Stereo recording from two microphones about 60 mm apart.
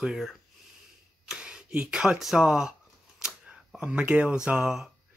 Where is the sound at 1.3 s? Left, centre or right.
Centre.